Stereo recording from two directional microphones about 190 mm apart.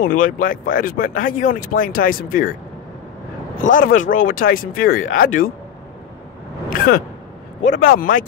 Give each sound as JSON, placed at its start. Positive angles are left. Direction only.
{"t": 0.0, "sound": "speech", "side_deg": 45}
{"t": 3.5, "sound": "speech", "side_deg": 45}
{"t": 7.7, "sound": "speech", "side_deg": 50}